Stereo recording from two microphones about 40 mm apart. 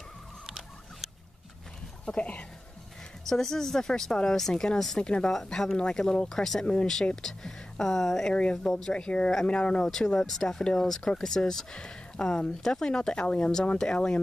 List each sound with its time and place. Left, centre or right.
0.5 s rodents: centre
2.0 s speech: left
3.3 s speech: centre
5.0 s speech: left
5.3 s speech: centre
5.8 s speech: centre
6.6 s speech: left
7.2 s speech: centre
8.3 s speech: left
9.8 s speech: centre